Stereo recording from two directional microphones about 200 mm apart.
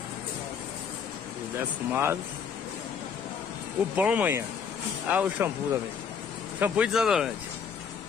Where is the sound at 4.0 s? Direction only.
10° right (ahead or behind).